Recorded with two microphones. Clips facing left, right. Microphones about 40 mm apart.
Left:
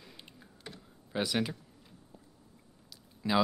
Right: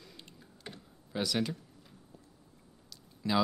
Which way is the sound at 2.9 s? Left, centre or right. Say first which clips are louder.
Left 1 dB; centre.